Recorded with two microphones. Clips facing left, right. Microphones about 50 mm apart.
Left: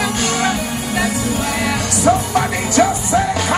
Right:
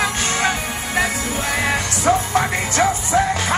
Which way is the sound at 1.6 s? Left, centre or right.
Right.